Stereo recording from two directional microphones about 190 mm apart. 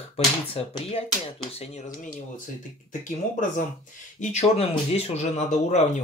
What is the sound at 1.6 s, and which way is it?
Speech, 35° left (ahead or behind).